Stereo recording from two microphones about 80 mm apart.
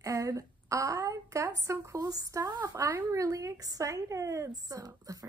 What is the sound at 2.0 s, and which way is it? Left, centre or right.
Speech, right.